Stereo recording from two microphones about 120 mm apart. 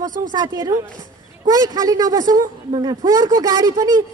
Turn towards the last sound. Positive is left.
turn(degrees=-35)  # may be behind; listen again after turning